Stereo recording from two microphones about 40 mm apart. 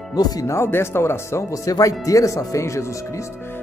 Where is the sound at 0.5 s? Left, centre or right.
Left.